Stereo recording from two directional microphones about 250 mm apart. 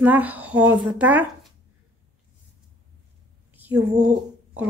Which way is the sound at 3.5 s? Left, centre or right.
Centre.